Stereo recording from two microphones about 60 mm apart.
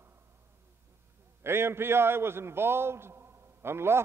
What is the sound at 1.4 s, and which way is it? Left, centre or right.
A man's voice, right.